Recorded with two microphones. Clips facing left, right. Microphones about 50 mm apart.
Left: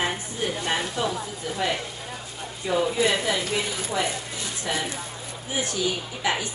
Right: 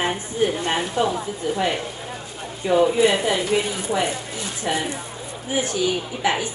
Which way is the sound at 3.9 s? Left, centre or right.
Right.